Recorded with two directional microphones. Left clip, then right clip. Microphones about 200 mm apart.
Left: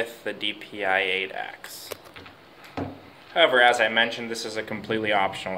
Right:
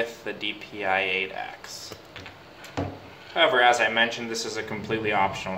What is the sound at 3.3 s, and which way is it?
Speech, 25° left (ahead or behind).